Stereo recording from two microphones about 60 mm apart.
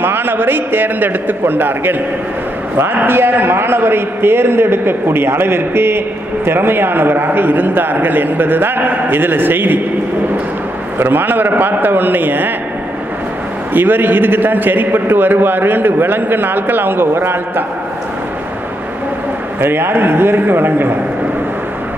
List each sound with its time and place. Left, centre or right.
0.0 s a man's voice: right
11.0 s a man's voice: right
13.7 s a man's voice: right
19.6 s a man's voice: right